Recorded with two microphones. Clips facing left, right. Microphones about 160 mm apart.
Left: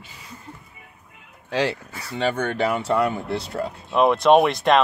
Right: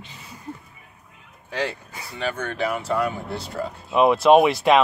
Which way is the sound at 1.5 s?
80° left.